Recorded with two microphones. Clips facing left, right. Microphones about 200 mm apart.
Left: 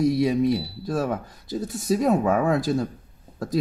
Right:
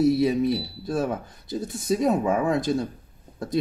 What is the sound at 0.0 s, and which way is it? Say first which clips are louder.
Speech: even; 5° right (ahead or behind).